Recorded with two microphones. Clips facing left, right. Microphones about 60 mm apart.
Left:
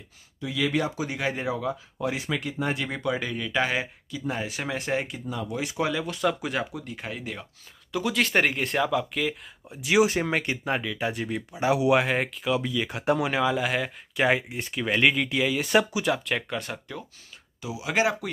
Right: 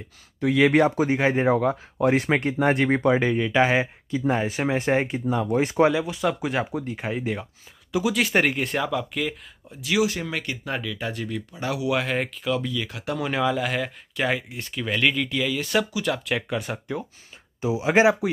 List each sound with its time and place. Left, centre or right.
0.4 s speech: right
1.5 s speech: right
5.2 s speech: right
5.9 s speech: centre
6.4 s speech: right
7.9 s speech: centre
9.7 s speech: left
12.1 s speech: centre
13.2 s speech: centre
14.2 s speech: centre
15.6 s speech: left
16.1 s speech: centre
17.6 s speech: right